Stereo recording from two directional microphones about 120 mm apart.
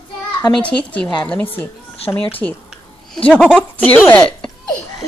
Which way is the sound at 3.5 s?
15° left (ahead or behind).